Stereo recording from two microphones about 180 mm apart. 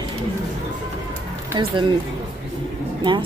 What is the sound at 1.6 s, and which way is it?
Speech, 25° right (ahead or behind).